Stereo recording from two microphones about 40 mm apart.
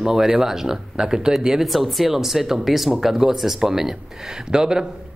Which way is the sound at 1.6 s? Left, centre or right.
Centre.